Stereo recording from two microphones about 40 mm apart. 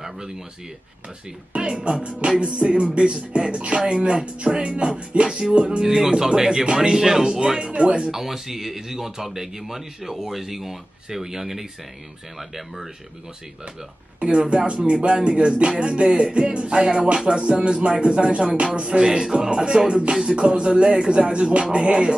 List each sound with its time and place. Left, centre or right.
1.5 s music: right
5.8 s speech: centre
6.6 s music: centre
8.1 s speech: centre
14.2 s music: right
19.7 s speech: centre
20.1 s music: centre